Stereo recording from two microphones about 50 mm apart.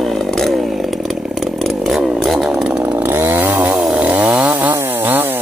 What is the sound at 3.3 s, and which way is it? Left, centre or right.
Chainsaw, right.